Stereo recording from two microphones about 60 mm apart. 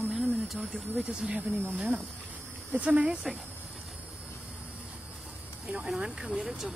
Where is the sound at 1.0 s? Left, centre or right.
Centre.